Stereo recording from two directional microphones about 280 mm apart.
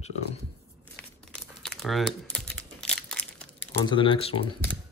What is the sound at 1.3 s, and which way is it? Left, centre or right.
Crumpling, centre.